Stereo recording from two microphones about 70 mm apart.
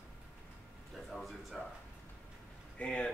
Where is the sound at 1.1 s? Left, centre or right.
Centre.